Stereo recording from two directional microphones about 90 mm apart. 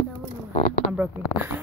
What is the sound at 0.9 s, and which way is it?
Speech, 20° right (ahead or behind).